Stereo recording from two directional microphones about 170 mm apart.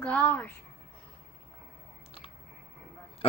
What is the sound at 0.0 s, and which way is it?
Speech, 10° left (ahead or behind).